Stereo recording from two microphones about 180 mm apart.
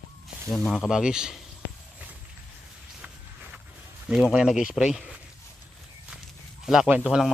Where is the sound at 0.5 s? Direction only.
5° left (ahead or behind).